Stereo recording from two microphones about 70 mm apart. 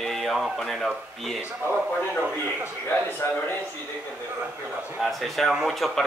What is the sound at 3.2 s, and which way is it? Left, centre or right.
Speech, left.